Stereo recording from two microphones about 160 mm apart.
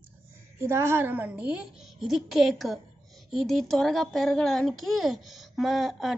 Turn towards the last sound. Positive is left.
turn(degrees=0)  # may be behind; listen again after turning